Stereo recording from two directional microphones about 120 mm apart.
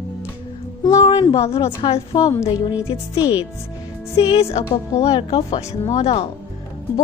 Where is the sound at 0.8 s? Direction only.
35° left (ahead or behind).